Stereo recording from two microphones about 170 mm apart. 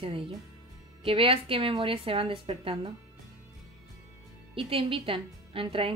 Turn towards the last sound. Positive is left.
turn(degrees=-30)  # may be behind; listen again after turning